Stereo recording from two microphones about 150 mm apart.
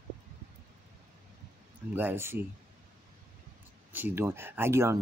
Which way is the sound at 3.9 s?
15° right (ahead or behind).